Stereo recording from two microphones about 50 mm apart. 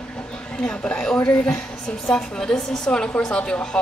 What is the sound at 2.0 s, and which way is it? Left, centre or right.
A woman's voice, centre.